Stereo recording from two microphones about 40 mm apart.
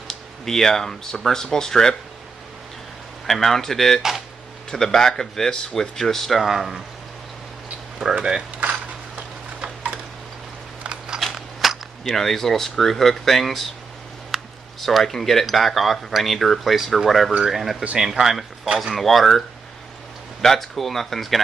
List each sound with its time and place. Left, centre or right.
0.1 s speech: centre
3.3 s speech: centre
8.0 s speech: centre
8.5 s a sound: right
11.1 s mechanisms: centre
12.2 s speech: centre
18.9 s speech: centre
20.4 s speech: centre